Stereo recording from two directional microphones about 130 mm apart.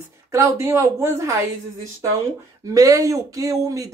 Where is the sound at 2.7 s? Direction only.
25° right (ahead or behind).